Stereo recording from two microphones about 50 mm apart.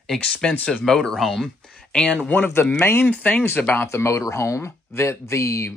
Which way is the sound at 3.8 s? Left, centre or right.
Left.